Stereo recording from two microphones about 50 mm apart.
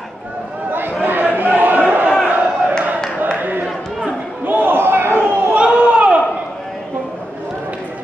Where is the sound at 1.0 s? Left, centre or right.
Right.